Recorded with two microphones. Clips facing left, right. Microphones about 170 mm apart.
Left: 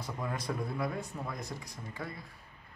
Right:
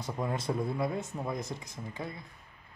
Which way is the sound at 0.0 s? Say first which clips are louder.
Right 4 dB; 25° right (ahead or behind).